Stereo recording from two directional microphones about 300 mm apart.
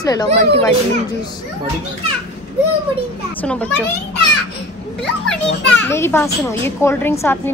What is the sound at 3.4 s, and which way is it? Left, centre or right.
Speech, centre.